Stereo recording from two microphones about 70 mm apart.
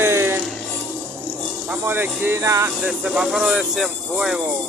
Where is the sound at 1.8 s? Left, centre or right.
Right.